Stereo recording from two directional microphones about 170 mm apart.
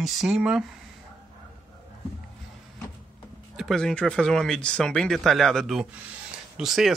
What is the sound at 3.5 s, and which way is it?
Speech, centre (ahead or behind).